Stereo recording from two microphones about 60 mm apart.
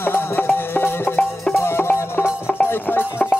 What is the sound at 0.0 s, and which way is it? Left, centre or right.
Music, left.